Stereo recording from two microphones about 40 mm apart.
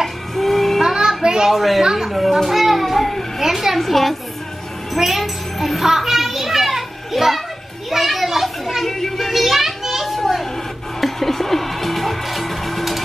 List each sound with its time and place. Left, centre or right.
0.0 s music: centre
0.8 s music: centre
1.5 s a woman's voice: centre
1.8 s a woman's voice: centre
2.0 s a woman's voice: centre
2.4 s child singing: centre
3.3 s a woman's voice: centre
3.7 s a woman's voice: centre
4.9 s music: centre
5.9 s children playing: centre
9.0 s a sound: centre
9.3 s children playing: centre
11.0 s music: centre